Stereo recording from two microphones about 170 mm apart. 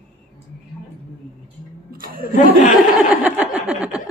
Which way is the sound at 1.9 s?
55° right (ahead or behind).